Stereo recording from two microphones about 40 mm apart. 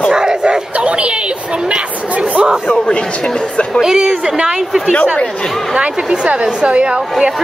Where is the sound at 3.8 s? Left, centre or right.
Centre.